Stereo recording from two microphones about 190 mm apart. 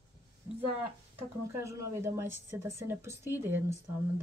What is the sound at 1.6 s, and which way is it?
Speech, 15° right (ahead or behind).